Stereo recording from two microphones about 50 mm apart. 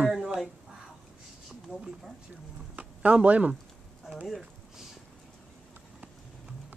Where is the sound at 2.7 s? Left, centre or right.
Right.